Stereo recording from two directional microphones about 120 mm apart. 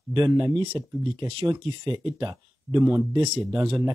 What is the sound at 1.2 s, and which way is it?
Speech, 40° right (ahead or behind).